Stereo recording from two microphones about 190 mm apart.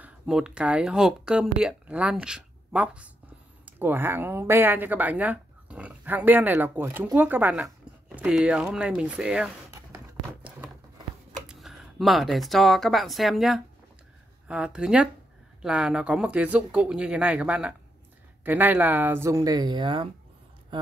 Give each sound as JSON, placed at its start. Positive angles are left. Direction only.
{"t": 0.0, "sound": "speech", "side_deg": -5}
{"t": 9.9, "sound": "a sound", "side_deg": -10}
{"t": 11.4, "sound": "speech", "side_deg": 0}